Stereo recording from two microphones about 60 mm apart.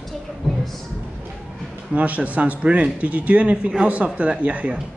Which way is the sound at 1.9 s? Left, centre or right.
Right.